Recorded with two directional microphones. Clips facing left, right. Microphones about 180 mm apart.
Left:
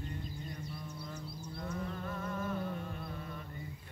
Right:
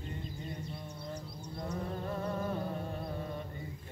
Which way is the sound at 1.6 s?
35° right (ahead or behind).